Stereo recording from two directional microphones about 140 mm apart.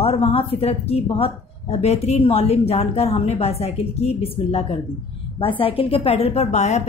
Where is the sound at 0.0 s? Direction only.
45° left (ahead or behind).